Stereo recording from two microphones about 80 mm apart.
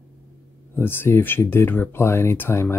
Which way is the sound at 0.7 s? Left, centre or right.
Left.